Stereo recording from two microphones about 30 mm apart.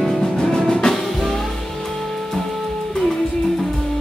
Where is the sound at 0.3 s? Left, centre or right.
Centre.